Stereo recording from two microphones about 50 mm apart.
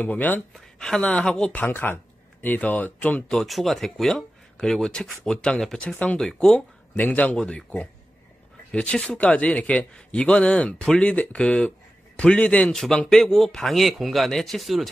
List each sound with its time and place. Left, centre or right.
0.0 s speech: left
0.5 s a man's voice: centre
1.7 s speech: left
2.4 s speech: left
3.4 s a man's voice: centre
9.2 s a man's voice: left
12.7 s speech: centre